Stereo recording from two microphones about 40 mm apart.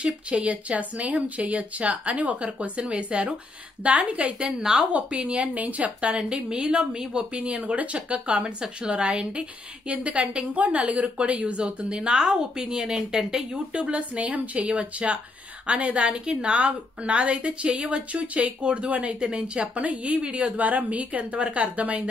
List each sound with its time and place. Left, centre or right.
0.0 s a woman's voice: right
4.5 s speech: centre
5.6 s a woman's voice: right
5.9 s speech: right
7.2 s a woman's voice: right
11.6 s speech: right
13.7 s a woman's voice: right